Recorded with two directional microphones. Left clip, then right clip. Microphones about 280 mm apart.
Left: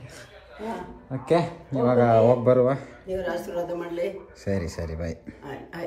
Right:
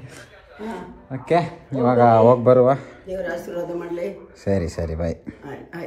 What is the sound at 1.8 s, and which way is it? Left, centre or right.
Speech, centre.